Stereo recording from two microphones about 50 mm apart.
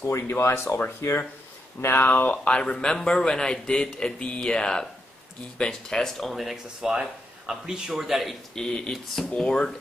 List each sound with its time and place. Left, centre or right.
0.3 s speech: left
1.8 s speech: left
2.6 s speech: centre
8.5 s speech: centre
8.9 s speech: centre
9.3 s speech: centre